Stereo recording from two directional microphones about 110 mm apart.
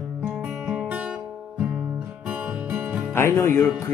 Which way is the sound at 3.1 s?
20° left (ahead or behind).